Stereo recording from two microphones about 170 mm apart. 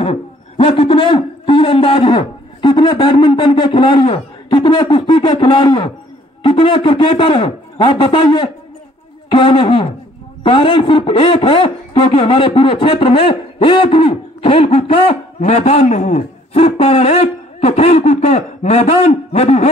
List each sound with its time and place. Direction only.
0.0 s speech: 35° left (ahead or behind)